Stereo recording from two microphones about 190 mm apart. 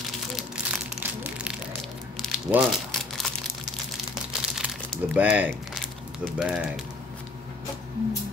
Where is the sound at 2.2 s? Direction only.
Centre (ahead or behind).